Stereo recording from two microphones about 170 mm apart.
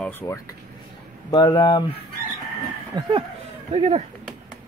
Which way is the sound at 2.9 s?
25° right (ahead or behind).